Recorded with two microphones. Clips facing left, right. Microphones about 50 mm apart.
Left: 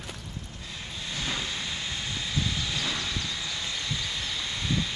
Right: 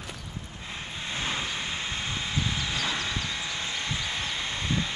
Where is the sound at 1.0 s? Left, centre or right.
Right.